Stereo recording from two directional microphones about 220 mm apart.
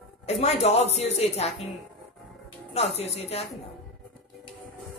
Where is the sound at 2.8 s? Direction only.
30° left (ahead or behind).